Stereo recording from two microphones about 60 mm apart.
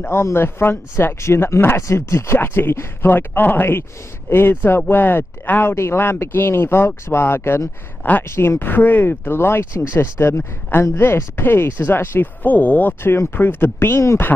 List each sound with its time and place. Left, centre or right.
0.0 s speech: left
1.2 s a woman's voice: left
1.8 s a woman's voice: left
2.3 s speech: left
3.1 s a woman's voice: left
12.4 s speech: left